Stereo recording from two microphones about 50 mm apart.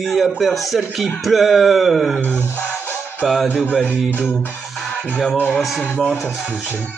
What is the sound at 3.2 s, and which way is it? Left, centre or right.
Music, centre.